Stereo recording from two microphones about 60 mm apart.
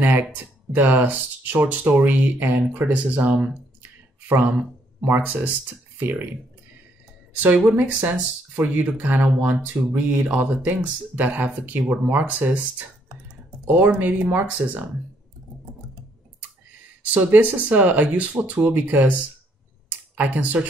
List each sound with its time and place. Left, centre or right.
0.0 s speech: right
7.3 s speech: right
17.1 s speech: right
19.9 s a sound: right